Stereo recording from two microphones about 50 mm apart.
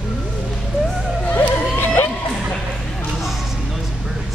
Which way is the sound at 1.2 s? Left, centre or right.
Left.